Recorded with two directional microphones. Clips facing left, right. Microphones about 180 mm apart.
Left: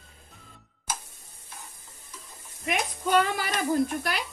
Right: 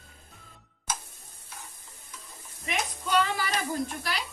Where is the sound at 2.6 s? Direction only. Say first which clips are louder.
Left 4 dB; 50° left (ahead or behind).